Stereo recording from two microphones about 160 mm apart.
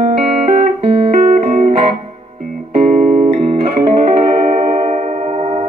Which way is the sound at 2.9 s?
50° right (ahead or behind).